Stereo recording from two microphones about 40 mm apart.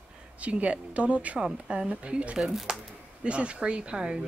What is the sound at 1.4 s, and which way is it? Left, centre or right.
Speech, centre.